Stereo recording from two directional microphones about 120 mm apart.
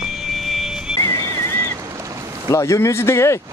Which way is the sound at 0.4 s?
Centre (ahead or behind).